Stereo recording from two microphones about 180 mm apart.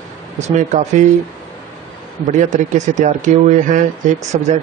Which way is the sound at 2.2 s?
40° right (ahead or behind).